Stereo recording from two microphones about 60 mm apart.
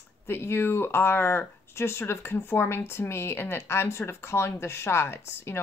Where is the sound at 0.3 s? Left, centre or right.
Left.